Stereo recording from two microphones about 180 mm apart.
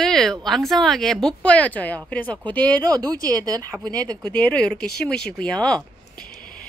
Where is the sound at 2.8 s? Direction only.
20° right (ahead or behind).